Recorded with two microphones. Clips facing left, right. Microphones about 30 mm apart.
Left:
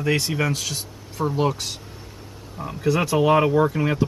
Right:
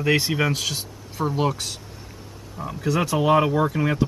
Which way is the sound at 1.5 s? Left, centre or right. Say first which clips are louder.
Left 1 dB; centre.